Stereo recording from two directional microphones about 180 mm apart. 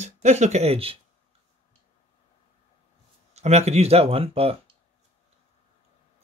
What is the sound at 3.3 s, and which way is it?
Speech, 35° right (ahead or behind).